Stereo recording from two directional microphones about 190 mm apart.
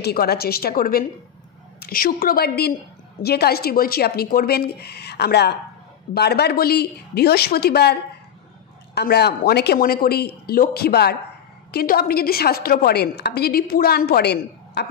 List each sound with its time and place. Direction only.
0.0 s a woman's voice: 55° left (ahead or behind)